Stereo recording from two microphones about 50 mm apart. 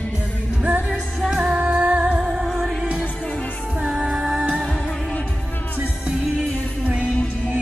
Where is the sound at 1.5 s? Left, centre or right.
Right.